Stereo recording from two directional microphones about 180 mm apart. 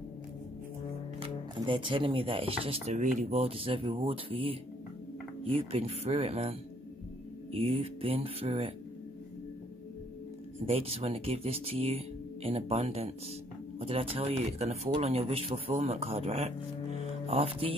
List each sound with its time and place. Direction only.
1.2 s speech: 30° right (ahead or behind)
7.5 s speech: 35° right (ahead or behind)
10.6 s speech: 30° right (ahead or behind)